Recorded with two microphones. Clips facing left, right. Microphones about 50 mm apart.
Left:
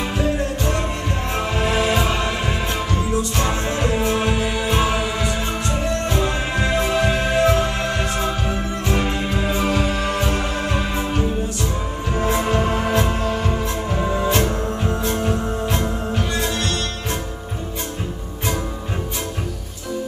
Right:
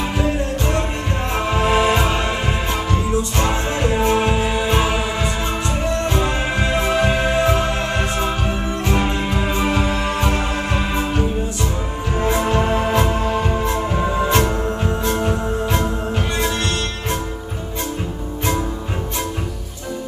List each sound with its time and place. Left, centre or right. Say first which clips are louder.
1.3 s music: right 4 dB; right
3.3 s music: right 2 dB; right
6.0 s music: right 2 dB; right
12.3 s music: right 2 dB; right
14.1 s music: right 2 dB; right
14.9 s music: right 1 dB; centre